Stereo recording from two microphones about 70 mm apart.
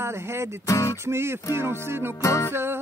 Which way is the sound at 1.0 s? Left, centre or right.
Right.